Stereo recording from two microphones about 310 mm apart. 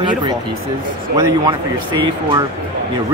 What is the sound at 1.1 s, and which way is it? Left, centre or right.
Speech, centre.